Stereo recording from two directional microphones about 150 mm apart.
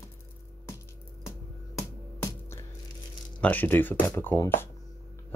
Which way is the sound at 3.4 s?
10° left (ahead or behind).